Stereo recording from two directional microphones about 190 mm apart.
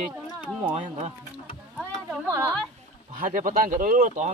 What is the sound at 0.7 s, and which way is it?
Speech, 25° right (ahead or behind).